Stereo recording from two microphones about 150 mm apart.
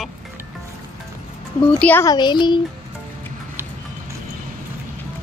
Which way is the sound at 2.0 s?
30° left (ahead or behind).